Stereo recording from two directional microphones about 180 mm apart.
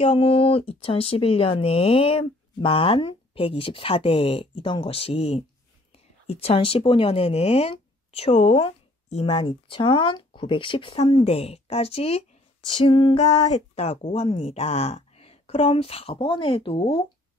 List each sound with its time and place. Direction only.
0.0 s speech: 30° left (ahead or behind)